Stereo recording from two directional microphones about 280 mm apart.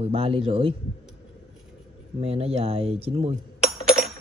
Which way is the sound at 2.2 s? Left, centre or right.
Right.